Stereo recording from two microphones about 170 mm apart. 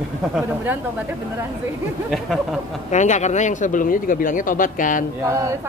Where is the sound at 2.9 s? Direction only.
45° left (ahead or behind).